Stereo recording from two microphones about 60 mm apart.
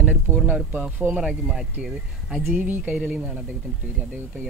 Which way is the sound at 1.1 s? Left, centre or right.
Centre.